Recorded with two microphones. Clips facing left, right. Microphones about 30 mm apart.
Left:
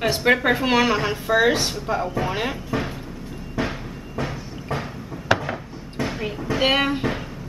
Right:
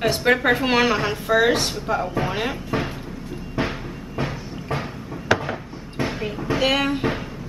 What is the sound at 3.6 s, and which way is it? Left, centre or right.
Music, right.